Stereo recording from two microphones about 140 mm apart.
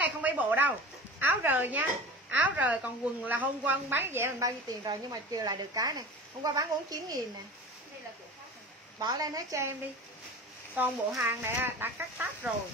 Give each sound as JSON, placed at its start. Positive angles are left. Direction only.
{"t": 0.0, "sound": "a sound", "side_deg": -10}
{"t": 1.2, "sound": "a woman's voice", "side_deg": -15}
{"t": 9.0, "sound": "a woman's voice", "side_deg": -25}
{"t": 10.8, "sound": "speech", "side_deg": -15}